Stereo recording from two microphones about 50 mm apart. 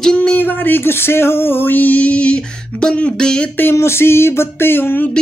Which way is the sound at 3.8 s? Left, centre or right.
Left.